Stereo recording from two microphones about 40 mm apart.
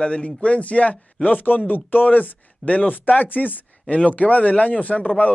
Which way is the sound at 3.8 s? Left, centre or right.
Left.